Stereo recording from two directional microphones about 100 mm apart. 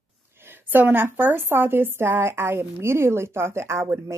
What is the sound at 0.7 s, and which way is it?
Speech, 20° right (ahead or behind).